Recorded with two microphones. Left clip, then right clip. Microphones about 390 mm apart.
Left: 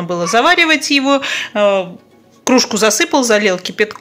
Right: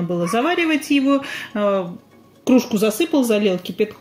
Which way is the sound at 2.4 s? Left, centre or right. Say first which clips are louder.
Left 5 dB; left.